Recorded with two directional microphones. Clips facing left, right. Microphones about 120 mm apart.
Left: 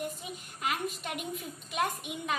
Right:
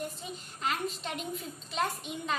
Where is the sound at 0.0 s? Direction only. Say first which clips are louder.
Left 1 dB; 10° left (ahead or behind).